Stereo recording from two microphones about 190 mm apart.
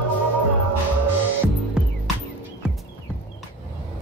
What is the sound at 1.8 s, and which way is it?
Music, 5° right (ahead or behind).